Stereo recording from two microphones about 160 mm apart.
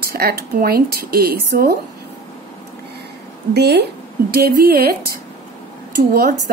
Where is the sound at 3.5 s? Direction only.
90° right.